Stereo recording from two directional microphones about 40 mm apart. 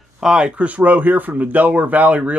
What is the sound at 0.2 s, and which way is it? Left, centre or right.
Speech, right.